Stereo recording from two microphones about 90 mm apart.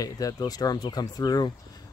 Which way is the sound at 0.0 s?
40° left (ahead or behind).